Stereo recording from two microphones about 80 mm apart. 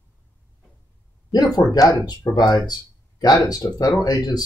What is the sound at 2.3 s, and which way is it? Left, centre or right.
Speech, left.